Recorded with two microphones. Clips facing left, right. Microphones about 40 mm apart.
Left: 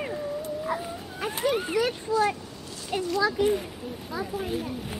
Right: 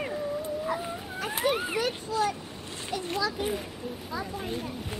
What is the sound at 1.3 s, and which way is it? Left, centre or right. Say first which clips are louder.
Children playing: left 1 dB; centre.